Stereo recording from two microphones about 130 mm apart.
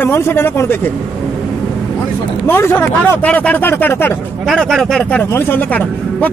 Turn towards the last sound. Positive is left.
turn(degrees=10)  # may be behind; listen again after turning